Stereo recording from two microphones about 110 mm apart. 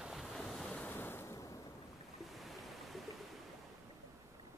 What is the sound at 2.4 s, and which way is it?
Waves, centre (ahead or behind).